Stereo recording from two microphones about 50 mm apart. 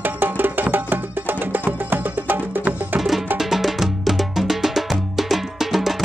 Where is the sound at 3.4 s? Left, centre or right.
Centre.